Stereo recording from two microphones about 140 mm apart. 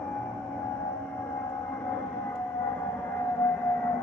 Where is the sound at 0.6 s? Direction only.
15° left (ahead or behind).